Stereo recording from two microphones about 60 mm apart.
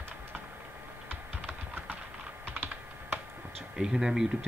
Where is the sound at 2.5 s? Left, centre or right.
Right.